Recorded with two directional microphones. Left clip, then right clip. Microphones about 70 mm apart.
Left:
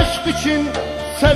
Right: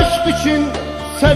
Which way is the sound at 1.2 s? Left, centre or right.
Centre.